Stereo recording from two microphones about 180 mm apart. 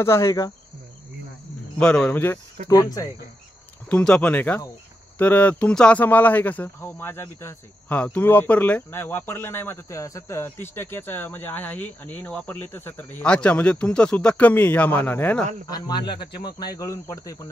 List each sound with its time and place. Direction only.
0.0 s speech: 15° left (ahead or behind)
1.8 s speech: 5° left (ahead or behind)
2.7 s speech: 20° left (ahead or behind)
3.9 s speech: 5° left (ahead or behind)
15.7 s speech: 25° left (ahead or behind)